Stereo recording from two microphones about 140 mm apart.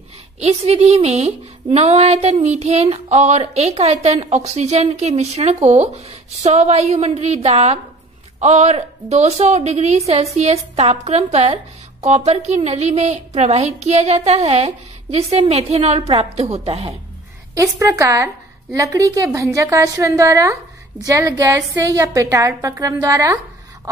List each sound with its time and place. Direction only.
0.4 s speech: 50° right (ahead or behind)
17.6 s a woman's voice: 20° right (ahead or behind)